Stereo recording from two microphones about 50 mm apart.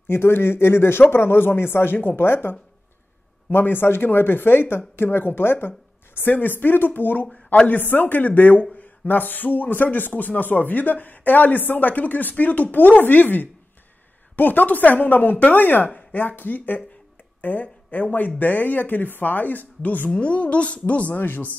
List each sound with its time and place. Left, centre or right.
0.1 s speech: left
20.1 s a woman's voice: left
21.1 s speech: left